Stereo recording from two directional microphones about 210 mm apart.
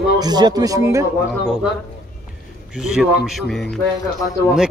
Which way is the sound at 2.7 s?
5° right (ahead or behind).